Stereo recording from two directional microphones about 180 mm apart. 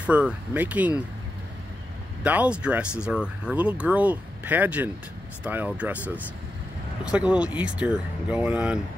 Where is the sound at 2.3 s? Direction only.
5° right (ahead or behind).